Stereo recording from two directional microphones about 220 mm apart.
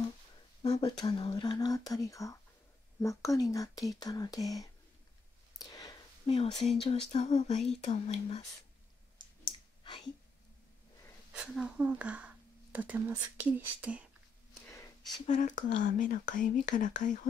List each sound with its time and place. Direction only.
0.6 s speech: 25° left (ahead or behind)
5.6 s a sound: 15° left (ahead or behind)
6.6 s speech: 30° left (ahead or behind)
9.8 s a sound: 20° left (ahead or behind)
11.3 s speech: 5° right (ahead or behind)
15.2 s speech: 35° left (ahead or behind)